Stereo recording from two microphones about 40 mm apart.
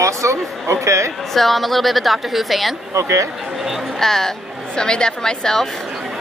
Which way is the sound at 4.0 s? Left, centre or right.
Centre.